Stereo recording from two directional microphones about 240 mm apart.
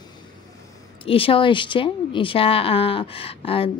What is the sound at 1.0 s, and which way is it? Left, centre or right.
Speech, left.